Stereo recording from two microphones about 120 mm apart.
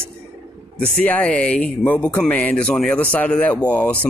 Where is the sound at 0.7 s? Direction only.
10° left (ahead or behind).